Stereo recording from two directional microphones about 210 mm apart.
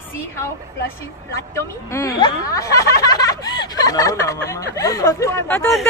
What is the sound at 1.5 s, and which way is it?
Speech, 15° left (ahead or behind).